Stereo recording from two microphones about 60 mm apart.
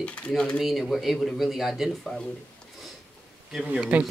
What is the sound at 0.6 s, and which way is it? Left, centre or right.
Speech, centre.